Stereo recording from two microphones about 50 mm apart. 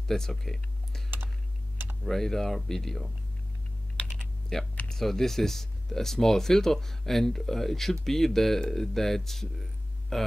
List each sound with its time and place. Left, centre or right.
0.1 s speech: centre
2.0 s speech: centre
4.0 s typing: left
4.5 s speech: centre